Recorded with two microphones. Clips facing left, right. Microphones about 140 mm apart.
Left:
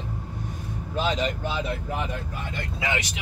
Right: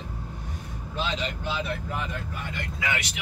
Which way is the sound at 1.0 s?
45° left (ahead or behind).